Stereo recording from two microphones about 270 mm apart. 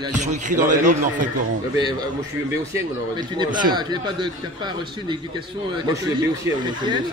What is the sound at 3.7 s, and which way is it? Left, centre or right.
Speech, centre.